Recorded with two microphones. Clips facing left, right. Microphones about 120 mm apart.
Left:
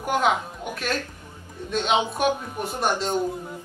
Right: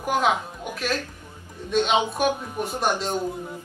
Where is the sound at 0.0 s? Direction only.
Centre (ahead or behind).